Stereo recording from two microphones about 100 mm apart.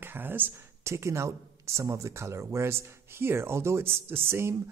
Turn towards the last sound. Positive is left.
turn(degrees=-25)  # may be behind; listen again after turning